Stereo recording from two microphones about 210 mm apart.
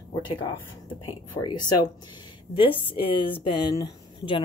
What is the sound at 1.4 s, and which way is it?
A woman's voice, 20° left (ahead or behind).